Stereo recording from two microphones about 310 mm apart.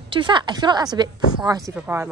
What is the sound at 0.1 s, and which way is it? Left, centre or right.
A woman's voice, centre.